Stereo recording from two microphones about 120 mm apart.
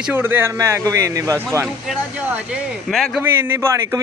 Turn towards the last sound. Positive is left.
turn(degrees=-20)  # may be behind; listen again after turning